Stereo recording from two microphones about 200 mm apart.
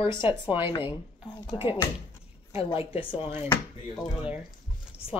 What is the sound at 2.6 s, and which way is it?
Speech, 25° left (ahead or behind).